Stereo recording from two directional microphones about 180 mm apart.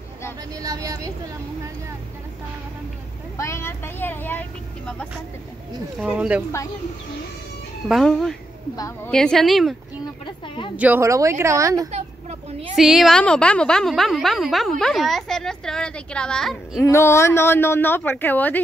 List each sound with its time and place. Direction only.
0.6 s a woman's voice: 20° right (ahead or behind)
3.3 s speech: 15° left (ahead or behind)
5.9 s speech: 5° right (ahead or behind)
7.9 s a woman's voice: 5° left (ahead or behind)
8.7 s speech: 15° left (ahead or behind)
9.1 s a woman's voice: 5° left (ahead or behind)
10.4 s speech: 25° left (ahead or behind)
10.8 s speech: 15° right (ahead or behind)
11.9 s a sound: 35° right (ahead or behind)
12.7 s a woman's voice: centre (ahead or behind)
16.8 s speech: 15° left (ahead or behind)